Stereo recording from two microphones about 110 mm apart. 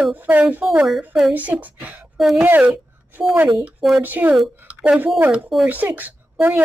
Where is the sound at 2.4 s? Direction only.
15° right (ahead or behind).